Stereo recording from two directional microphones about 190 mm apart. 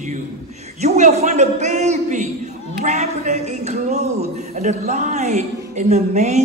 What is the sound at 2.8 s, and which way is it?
A man's voice, 35° right (ahead or behind).